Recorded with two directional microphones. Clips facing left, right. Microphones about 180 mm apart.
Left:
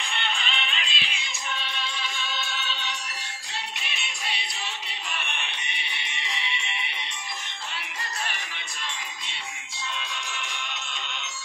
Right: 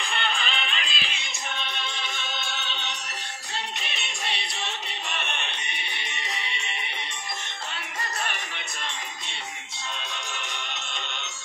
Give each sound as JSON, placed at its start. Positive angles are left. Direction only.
{"t": 0.0, "sound": "music", "side_deg": -50}
{"t": 3.8, "sound": "music", "side_deg": -45}